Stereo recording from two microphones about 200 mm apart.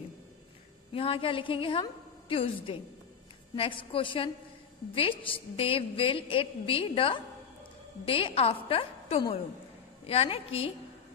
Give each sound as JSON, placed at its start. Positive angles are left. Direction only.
{"t": 0.9, "sound": "a woman's voice", "side_deg": 25}